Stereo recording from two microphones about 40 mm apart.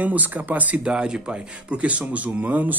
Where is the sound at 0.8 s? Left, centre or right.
Right.